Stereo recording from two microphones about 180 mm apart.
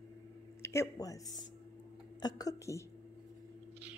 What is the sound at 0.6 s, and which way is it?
A woman's voice, 15° left (ahead or behind).